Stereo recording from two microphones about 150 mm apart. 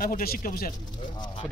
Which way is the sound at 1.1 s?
30° left (ahead or behind).